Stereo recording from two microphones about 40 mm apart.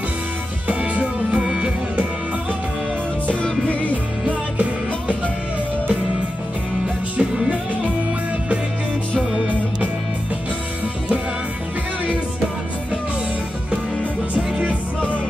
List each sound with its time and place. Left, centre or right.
0.7 s music: right
1.4 s music: right
3.3 s music: left
4.3 s music: right
7.2 s music: right